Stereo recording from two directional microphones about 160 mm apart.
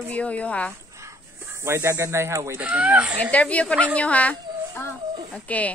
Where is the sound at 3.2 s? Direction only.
10° left (ahead or behind).